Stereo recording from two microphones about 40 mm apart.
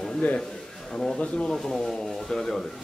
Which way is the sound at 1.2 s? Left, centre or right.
Left.